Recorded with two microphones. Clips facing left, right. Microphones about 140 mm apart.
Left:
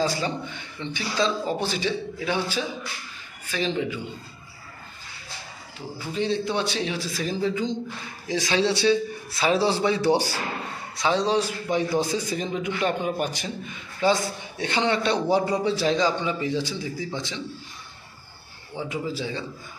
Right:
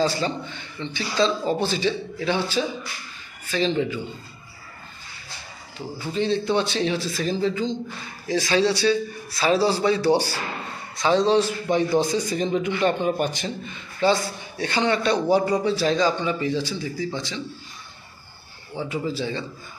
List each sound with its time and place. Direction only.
0.0 s a man's voice: 15° left (ahead or behind)
6.1 s a man's voice: 10° left (ahead or behind)
18.8 s a man's voice: 15° left (ahead or behind)